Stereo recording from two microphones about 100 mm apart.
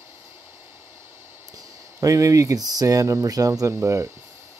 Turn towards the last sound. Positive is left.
turn(degrees=-30)  # may be behind; listen again after turning